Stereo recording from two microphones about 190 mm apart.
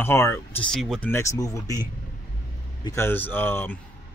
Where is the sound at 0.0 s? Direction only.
15° left (ahead or behind).